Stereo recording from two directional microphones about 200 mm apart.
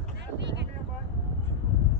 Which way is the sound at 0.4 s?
60° right (ahead or behind).